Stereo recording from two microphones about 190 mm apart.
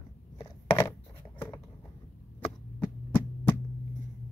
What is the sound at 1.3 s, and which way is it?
Writing, 10° left (ahead or behind).